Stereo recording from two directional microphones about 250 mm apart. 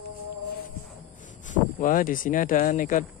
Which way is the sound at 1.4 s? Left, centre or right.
Left.